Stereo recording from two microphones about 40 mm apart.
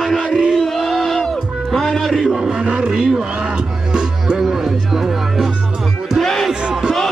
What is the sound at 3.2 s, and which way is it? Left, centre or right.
Music, right.